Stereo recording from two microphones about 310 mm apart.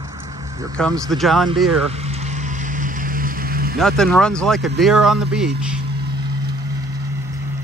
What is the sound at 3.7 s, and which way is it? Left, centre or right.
Speech, centre.